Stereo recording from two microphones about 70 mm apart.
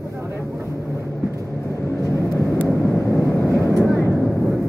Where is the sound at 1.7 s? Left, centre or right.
Left.